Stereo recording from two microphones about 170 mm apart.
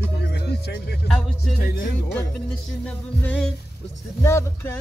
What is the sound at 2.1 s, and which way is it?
Music, 5° left (ahead or behind).